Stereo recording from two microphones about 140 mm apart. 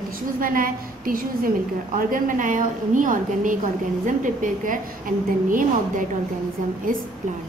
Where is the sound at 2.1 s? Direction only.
70° right (ahead or behind).